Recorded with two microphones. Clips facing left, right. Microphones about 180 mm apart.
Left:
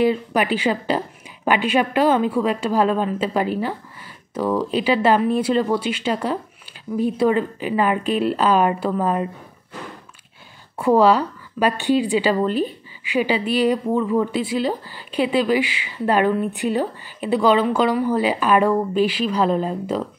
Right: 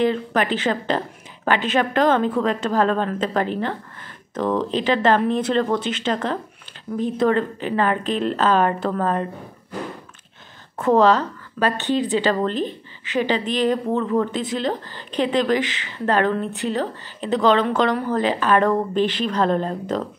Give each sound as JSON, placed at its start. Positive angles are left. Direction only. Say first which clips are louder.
{"t": 0.0, "sound": "speech", "louder": "left 1 dB", "side_deg": 10}
{"t": 10.8, "sound": "speech", "louder": "left 1 dB", "side_deg": 10}